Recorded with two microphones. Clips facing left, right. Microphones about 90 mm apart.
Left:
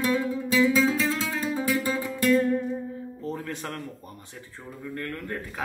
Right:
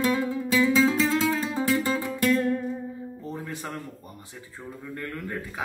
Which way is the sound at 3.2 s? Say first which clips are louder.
Left 4 dB; 15° right (ahead or behind).